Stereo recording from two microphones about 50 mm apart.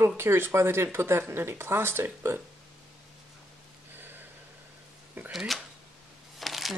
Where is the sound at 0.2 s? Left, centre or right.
Right.